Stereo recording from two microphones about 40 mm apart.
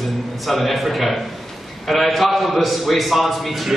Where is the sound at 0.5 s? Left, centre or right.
Centre.